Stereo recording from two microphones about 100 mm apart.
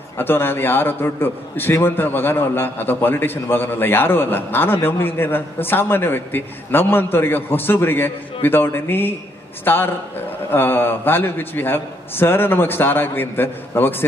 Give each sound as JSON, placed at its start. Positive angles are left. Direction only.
{"t": 0.2, "sound": "a man's voice", "side_deg": 20}